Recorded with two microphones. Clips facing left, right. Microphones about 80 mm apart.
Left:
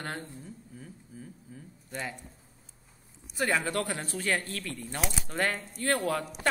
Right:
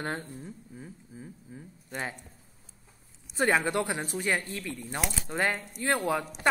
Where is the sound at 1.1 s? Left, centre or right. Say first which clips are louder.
Right 1 dB; right.